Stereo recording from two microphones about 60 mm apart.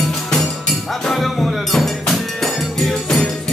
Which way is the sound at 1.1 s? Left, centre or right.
Centre.